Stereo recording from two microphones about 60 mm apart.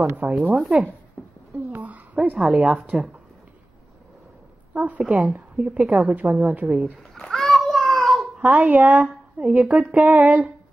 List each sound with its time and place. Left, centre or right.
0.2 s speech: right
1.7 s a sound: right
2.3 s a woman's voice: centre
4.7 s speech: right
5.0 s a woman's voice: centre
7.0 s splash: centre
7.9 s babbling: centre
8.4 s speech: right